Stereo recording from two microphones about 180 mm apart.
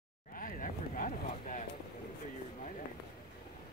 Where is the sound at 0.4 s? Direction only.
50° left (ahead or behind).